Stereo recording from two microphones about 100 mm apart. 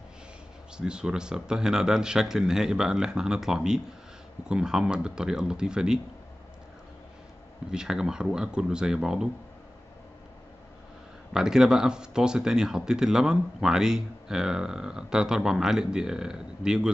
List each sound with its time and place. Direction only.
0.7 s speech: 10° right (ahead or behind)
7.7 s speech: 5° right (ahead or behind)
11.3 s speech: 5° right (ahead or behind)